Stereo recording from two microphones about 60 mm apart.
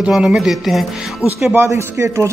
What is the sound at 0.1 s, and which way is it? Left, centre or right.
Speech, centre.